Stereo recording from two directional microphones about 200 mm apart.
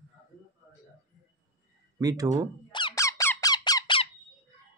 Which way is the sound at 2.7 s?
25° left (ahead or behind).